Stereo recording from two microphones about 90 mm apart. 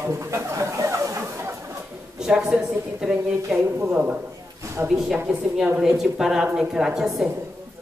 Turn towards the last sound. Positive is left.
turn(degrees=-5)  # may be behind; listen again after turning